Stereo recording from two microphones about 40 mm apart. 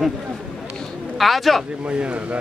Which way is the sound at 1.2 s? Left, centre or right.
Centre.